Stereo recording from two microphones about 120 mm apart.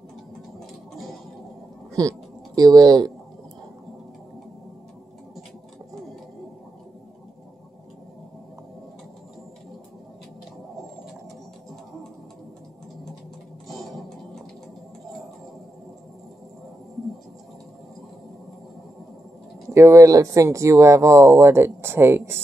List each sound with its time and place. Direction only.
2.0 s speech: 30° right (ahead or behind)
19.7 s speech: 25° right (ahead or behind)